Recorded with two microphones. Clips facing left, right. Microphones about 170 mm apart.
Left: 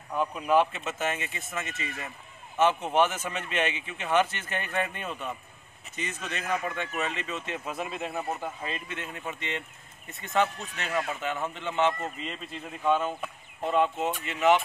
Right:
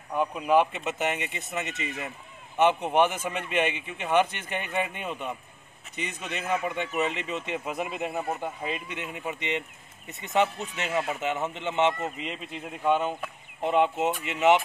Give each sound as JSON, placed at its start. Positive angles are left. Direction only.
{"t": 0.1, "sound": "speech", "side_deg": -10}